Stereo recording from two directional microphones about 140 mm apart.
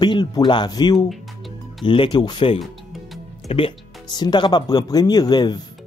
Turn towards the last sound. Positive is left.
turn(degrees=30)  # may be behind; listen again after turning